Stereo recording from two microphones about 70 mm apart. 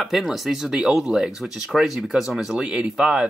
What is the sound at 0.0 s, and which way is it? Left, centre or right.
Speech, centre.